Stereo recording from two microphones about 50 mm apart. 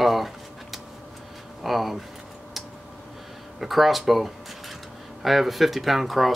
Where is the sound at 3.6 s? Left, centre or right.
Centre.